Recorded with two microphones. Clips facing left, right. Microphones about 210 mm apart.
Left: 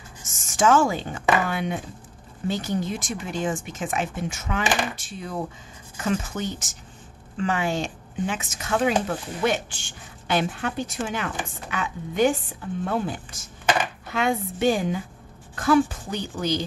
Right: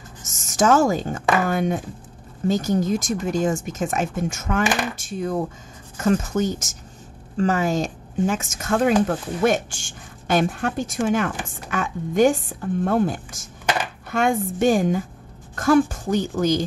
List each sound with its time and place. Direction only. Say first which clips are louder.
0.3 s speech: right 2 dB; 40° right (ahead or behind)